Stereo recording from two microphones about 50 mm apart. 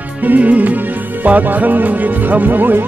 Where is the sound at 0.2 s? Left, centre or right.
Right.